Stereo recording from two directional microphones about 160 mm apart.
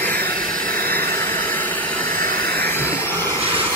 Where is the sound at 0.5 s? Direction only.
60° right (ahead or behind).